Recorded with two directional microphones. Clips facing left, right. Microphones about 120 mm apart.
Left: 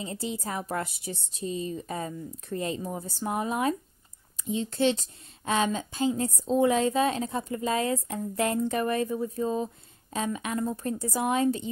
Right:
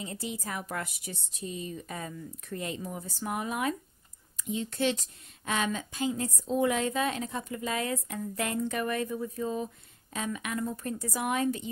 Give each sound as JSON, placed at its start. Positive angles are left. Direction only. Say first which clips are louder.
{"t": 0.0, "sound": "speech", "louder": "left 4 dB", "side_deg": 30}